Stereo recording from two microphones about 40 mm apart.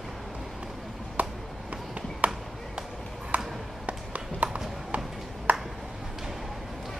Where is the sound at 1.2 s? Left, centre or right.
Right.